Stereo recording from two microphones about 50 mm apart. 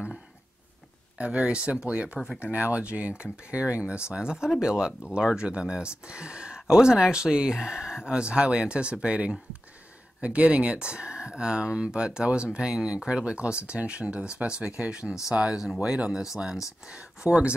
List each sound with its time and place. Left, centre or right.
1.1 s speech: right